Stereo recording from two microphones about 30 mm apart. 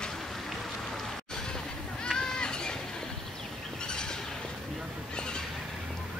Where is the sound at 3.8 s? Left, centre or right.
Left.